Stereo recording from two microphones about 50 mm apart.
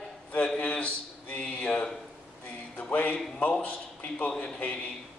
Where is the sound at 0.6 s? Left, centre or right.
Left.